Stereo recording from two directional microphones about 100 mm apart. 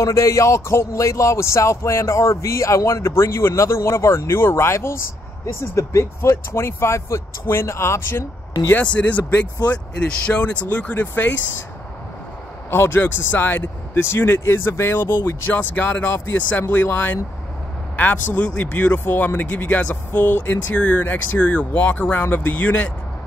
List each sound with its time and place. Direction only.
0.0 s a man's voice: 30° left (ahead or behind)
12.6 s a man's voice: 25° left (ahead or behind)